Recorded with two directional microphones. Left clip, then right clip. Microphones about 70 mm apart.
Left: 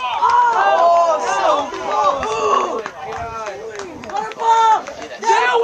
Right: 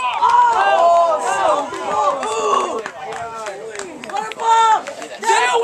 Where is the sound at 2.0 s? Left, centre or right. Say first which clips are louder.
Left 2 dB; right.